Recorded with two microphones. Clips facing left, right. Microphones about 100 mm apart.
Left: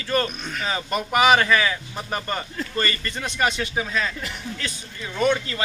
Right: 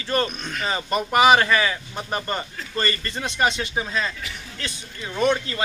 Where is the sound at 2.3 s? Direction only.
30° right (ahead or behind).